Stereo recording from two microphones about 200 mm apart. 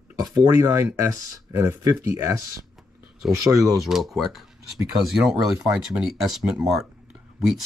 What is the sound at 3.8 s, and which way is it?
Speech, centre (ahead or behind).